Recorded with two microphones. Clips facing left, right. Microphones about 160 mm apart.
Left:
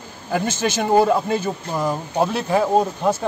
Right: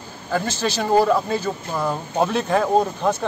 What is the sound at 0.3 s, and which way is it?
Speech, 20° left (ahead or behind).